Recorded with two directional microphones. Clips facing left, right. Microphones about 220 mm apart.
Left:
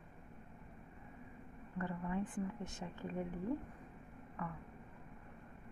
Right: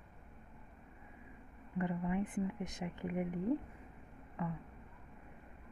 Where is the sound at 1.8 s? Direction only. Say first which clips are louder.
Right 4 dB; 15° right (ahead or behind).